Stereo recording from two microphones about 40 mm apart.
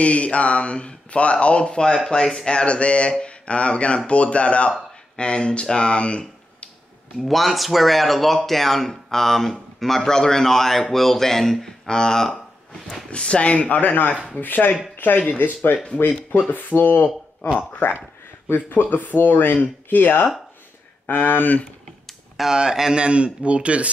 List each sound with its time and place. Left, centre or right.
0.0 s speech: left; by 2.5 s centre
2.5 s speech: left
7.2 s speech: centre
13.1 s speech: left
13.7 s speech: left
17.5 s speech: left
18.5 s speech: left
22.6 s speech: centre
23.0 s speech: right